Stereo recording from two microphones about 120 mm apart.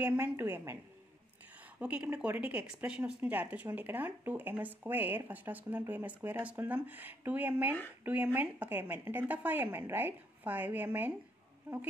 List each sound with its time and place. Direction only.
0.0 s speech: 15° right (ahead or behind)
1.8 s speech: 10° right (ahead or behind)